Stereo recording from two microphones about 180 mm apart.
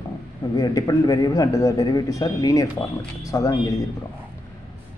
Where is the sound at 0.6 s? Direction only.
20° left (ahead or behind).